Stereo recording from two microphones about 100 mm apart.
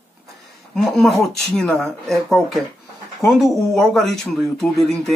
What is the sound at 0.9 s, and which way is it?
Speech, 5° left (ahead or behind).